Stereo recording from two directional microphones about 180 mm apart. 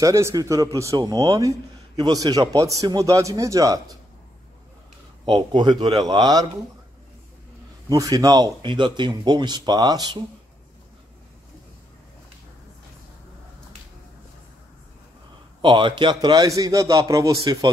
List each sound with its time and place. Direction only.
0.0 s speech: 15° right (ahead or behind)
5.2 s speech: 25° right (ahead or behind)
7.9 s speech: 20° right (ahead or behind)
15.6 s speech: 25° right (ahead or behind)